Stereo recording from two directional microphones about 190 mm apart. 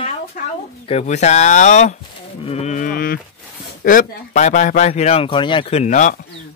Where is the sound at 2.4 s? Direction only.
35° left (ahead or behind).